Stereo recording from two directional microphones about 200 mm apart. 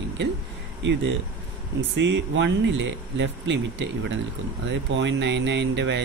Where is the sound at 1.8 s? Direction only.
65° right (ahead or behind).